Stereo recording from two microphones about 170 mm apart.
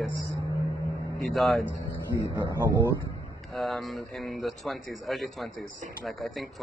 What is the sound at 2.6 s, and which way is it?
Speech, 15° right (ahead or behind).